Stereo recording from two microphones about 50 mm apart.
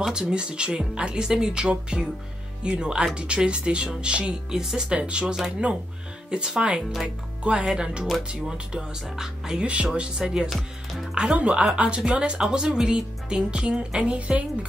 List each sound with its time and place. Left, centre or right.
0.0 s speech: centre
6.3 s speech: centre
9.6 s speech: right
9.9 s speech: centre
10.5 s speech: centre
11.1 s speech: right